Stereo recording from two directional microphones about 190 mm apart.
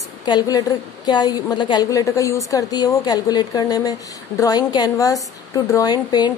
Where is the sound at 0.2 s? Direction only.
20° left (ahead or behind).